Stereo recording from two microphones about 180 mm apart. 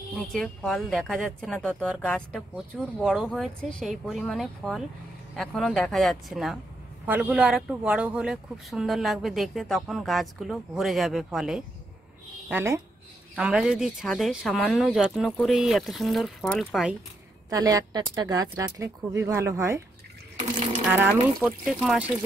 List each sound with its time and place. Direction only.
0.1 s a woman's voice: 5° left (ahead or behind)
12.4 s a woman's voice: 15° right (ahead or behind)
17.5 s speech: 20° right (ahead or behind)
20.9 s speech: 10° right (ahead or behind)